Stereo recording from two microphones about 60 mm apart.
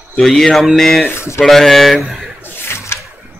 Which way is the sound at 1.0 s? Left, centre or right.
Left.